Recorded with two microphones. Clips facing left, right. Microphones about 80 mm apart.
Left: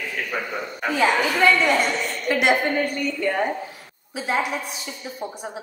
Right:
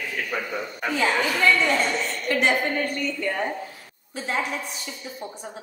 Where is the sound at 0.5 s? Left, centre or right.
Centre.